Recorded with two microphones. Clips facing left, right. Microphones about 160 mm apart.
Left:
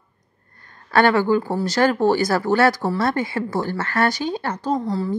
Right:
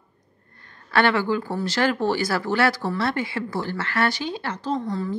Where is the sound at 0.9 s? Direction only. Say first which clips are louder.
Left 4 dB; 45° left (ahead or behind).